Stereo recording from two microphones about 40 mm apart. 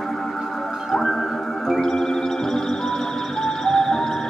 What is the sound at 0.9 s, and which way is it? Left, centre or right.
Music, centre.